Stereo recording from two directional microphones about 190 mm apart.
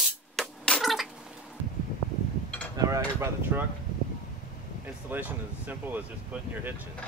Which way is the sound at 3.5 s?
10° right (ahead or behind).